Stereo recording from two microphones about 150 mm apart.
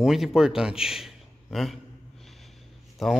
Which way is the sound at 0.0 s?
Centre (ahead or behind).